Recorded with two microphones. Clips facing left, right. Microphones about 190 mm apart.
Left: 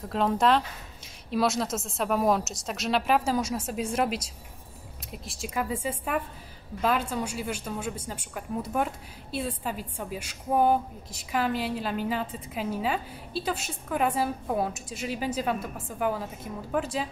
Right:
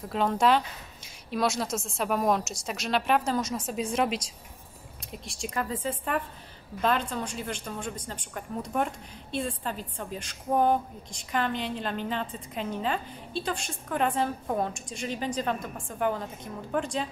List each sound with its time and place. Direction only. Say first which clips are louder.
0.1 s a woman's voice: even; centre (ahead or behind)